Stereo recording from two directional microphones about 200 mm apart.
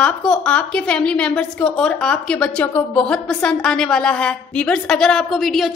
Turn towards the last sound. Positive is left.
turn(degrees=0)  # may be behind; listen again after turning